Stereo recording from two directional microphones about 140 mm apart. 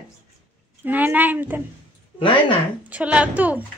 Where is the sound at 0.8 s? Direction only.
10° right (ahead or behind).